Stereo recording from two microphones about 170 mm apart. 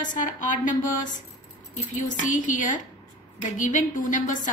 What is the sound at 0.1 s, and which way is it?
Speech, 50° left (ahead or behind).